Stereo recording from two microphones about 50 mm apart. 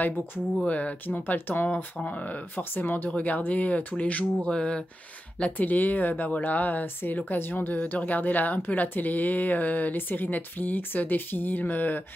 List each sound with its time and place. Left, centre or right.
0.6 s speech: left
5.4 s speech: left
7.7 s speech: left